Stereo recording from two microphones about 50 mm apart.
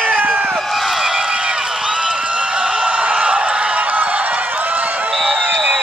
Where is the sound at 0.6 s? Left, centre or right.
Centre.